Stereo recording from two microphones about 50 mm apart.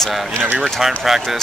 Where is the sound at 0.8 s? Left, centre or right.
Centre.